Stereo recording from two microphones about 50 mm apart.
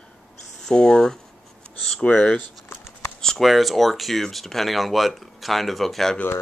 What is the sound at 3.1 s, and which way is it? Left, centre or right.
Speech, centre.